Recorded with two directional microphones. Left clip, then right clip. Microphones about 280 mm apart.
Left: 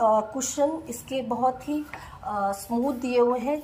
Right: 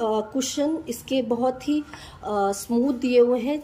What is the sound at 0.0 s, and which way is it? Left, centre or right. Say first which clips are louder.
Speech: left 2 dB; centre.